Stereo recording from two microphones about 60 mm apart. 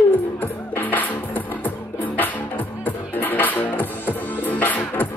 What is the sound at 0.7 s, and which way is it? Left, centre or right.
Music, left.